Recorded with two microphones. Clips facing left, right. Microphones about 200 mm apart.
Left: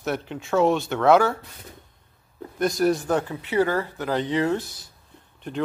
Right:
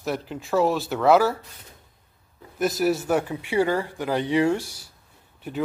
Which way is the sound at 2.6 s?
5° right (ahead or behind).